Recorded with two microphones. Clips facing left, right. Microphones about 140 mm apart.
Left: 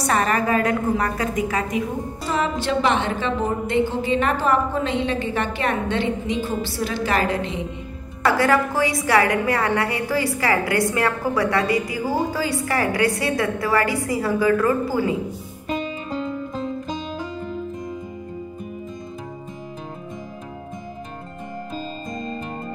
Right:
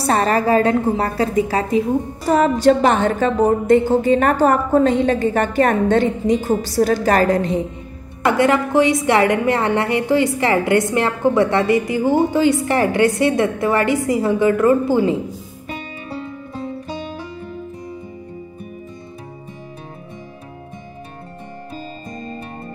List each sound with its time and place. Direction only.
0.0 s a woman's voice: 35° right (ahead or behind)
2.2 s a woman's voice: 45° right (ahead or behind)
8.2 s a woman's voice: 20° right (ahead or behind)